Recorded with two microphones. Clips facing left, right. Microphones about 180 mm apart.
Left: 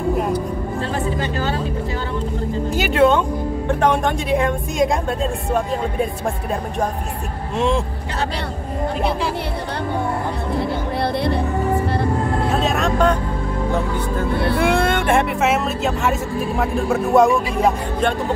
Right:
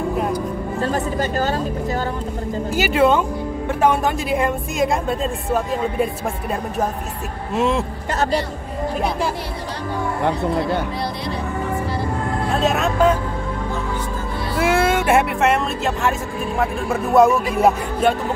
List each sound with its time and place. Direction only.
0.7 s a sound: 40° right (ahead or behind)
2.7 s speech: 5° right (ahead or behind)
7.5 s speech: centre (ahead or behind)
12.4 s speech: centre (ahead or behind)
14.3 s speech: 60° left (ahead or behind)
14.6 s speech: 5° right (ahead or behind)